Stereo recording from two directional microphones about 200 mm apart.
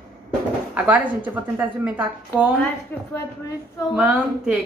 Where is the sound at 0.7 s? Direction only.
10° right (ahead or behind).